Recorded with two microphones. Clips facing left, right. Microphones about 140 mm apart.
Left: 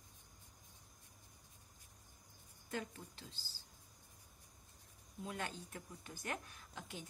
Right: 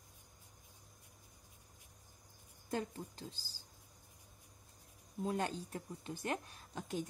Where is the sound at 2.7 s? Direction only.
35° right (ahead or behind).